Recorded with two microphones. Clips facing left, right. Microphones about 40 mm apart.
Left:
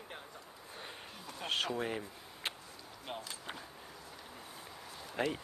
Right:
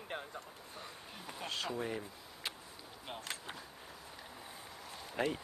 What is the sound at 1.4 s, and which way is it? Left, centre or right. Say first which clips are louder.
Speech: left 5 dB; left.